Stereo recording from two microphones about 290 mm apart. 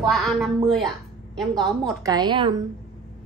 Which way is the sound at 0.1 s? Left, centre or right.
Centre.